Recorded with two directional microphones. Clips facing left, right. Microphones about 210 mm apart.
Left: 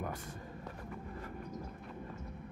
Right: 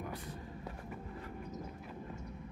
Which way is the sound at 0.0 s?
45° left (ahead or behind).